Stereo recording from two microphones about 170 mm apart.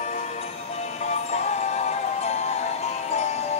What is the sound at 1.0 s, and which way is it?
Music, 40° left (ahead or behind).